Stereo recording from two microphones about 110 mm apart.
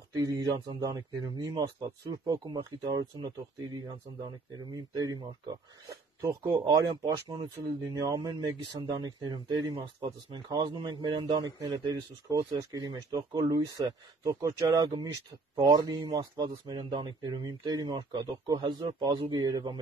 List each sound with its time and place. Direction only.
0.1 s speech: 30° right (ahead or behind)
4.7 s speech: 35° right (ahead or behind)